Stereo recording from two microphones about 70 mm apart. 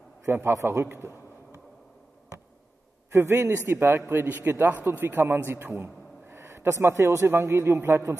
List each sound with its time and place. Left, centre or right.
0.2 s a man's voice: right
3.1 s a man's voice: right